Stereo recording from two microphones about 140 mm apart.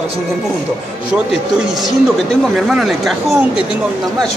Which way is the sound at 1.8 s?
Centre (ahead or behind).